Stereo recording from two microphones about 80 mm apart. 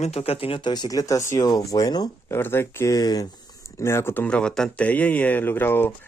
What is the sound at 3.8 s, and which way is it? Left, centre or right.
Speech, left.